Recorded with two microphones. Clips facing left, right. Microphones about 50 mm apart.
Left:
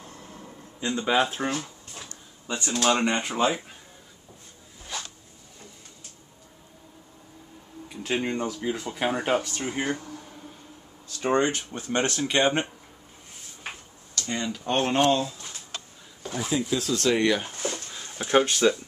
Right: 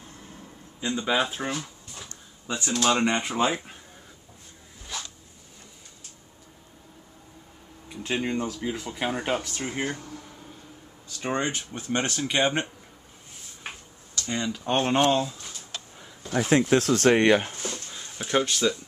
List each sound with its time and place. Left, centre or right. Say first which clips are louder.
0.7 s speech: left 2 dB; centre
7.9 s speech: even; centre
9.7 s speech: left 1 dB; centre
11.2 s speech: left 4 dB; centre
13.7 s tick-tock: left 1 dB; centre
16.3 s speech: right 6 dB; right
17.6 s a sound: left 3 dB; left
18.2 s speech: left 3 dB; left